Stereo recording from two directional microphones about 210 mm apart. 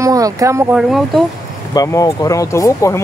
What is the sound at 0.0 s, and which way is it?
Speech, 15° right (ahead or behind).